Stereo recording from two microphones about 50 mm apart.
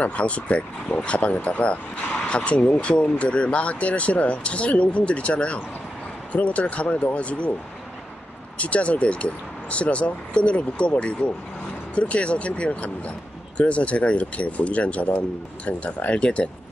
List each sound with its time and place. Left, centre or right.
0.0 s speech: left
8.5 s speech: left